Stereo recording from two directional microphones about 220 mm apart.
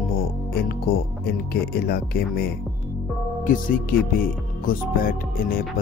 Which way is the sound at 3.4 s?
40° left (ahead or behind).